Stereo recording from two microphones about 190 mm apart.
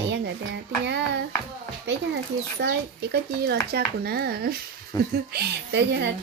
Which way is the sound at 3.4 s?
55° right (ahead or behind).